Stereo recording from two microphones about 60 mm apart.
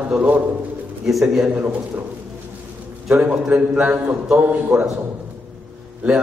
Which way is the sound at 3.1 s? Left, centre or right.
Right.